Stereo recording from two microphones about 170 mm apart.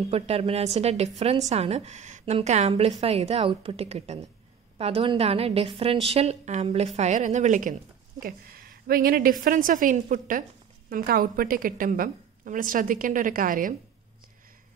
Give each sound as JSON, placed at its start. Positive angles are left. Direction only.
{"t": 0.1, "sound": "a woman's voice", "side_deg": -35}
{"t": 8.2, "sound": "a woman's voice", "side_deg": -60}